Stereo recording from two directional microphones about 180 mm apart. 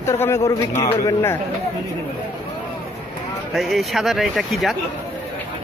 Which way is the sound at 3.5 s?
Centre (ahead or behind).